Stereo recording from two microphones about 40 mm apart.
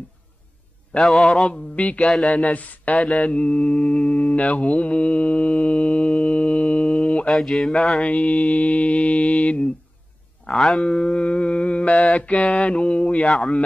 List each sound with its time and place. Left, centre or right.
1.2 s mantra: left
1.8 s speech: left
2.2 s mantra: left
7.2 s mantra: centre
8.0 s speech: left
10.5 s mantra: centre
10.8 s mantra: left